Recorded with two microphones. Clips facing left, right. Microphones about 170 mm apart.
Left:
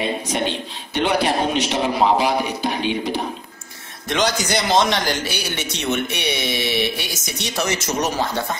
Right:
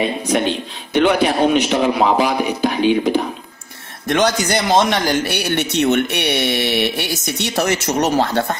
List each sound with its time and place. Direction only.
0.9 s a man's voice: 55° right (ahead or behind)